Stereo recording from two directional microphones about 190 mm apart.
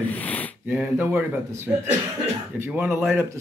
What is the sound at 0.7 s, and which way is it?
Speech, 10° right (ahead or behind).